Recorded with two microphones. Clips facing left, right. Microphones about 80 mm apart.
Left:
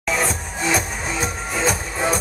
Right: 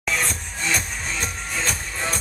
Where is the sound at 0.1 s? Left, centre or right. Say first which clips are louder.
Left 4 dB; centre.